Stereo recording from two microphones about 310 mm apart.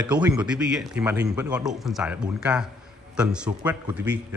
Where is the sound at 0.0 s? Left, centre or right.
Centre.